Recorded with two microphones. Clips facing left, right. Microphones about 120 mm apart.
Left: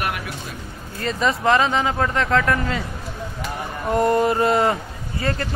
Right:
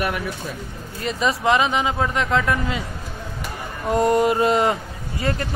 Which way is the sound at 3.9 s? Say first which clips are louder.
Even; 20° right (ahead or behind).